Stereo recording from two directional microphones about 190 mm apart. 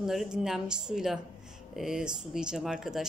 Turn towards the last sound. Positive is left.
turn(degrees=0)  # may be behind; listen again after turning